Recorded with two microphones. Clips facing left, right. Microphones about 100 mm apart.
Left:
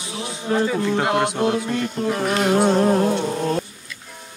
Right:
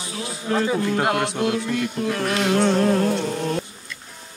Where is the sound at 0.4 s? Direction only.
30° left (ahead or behind).